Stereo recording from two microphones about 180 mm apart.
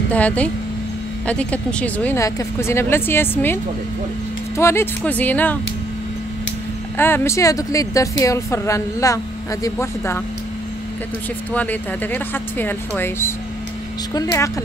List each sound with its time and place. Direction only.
0.1 s speech: 10° left (ahead or behind)
4.6 s speech: 15° left (ahead or behind)
7.0 s speech: 15° left (ahead or behind)
11.5 s speech: 10° left (ahead or behind)